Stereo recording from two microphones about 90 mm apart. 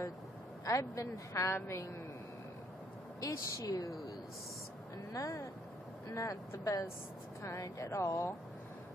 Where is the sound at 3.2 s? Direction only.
40° left (ahead or behind).